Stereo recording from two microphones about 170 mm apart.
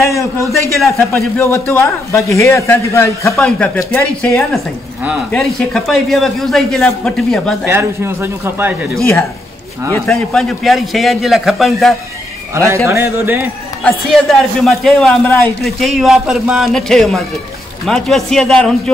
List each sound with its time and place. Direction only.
0.0 s speech: 20° left (ahead or behind)
3.3 s a man's voice: 5° left (ahead or behind)
7.6 s a man's voice: 15° right (ahead or behind)
10.0 s a man's voice: centre (ahead or behind)
12.5 s a man's voice: 15° right (ahead or behind)
13.8 s a man's voice: centre (ahead or behind)